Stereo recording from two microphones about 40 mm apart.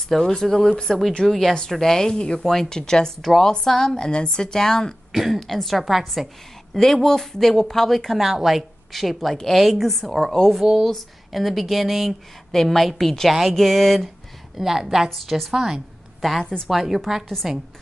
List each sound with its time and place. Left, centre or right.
0.2 s speech: centre
3.2 s a woman's voice: centre
5.1 s a woman's voice: centre
6.7 s speech: centre
8.2 s a woman's voice: centre
10.5 s a woman's voice: centre
14.6 s a woman's voice: centre
15.0 s a woman's voice: centre
15.5 s a woman's voice: centre